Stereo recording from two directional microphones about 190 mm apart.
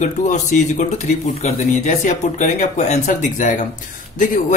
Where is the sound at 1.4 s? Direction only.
40° left (ahead or behind).